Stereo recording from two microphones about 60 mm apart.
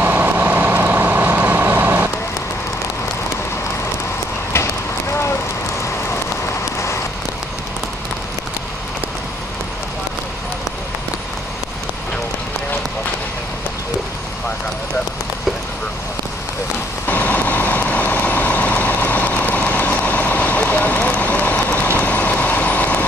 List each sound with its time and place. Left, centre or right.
0.0 s vehicle: right
17.1 s vehicle: left